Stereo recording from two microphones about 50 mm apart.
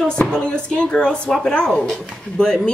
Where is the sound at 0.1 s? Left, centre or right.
Left.